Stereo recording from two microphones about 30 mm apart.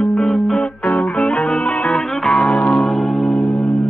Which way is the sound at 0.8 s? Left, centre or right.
Left.